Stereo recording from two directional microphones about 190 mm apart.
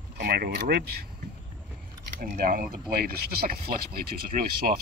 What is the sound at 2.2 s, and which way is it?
Speech, 50° right (ahead or behind).